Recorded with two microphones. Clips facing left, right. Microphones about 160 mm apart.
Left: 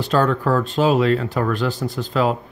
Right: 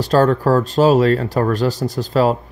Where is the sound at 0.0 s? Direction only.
40° right (ahead or behind).